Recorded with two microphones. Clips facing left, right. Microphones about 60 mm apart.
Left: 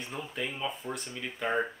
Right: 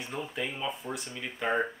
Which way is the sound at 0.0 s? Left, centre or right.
Centre.